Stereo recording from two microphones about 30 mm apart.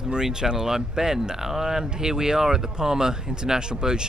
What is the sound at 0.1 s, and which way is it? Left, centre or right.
Speech, right.